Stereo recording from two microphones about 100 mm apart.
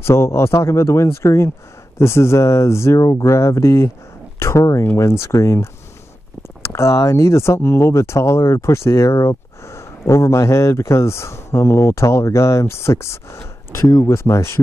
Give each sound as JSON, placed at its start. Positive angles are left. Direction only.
{"t": 0.0, "sound": "speech", "side_deg": 25}